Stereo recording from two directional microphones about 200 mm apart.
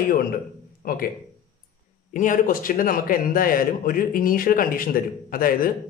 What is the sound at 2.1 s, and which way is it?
A man's voice, 40° left (ahead or behind).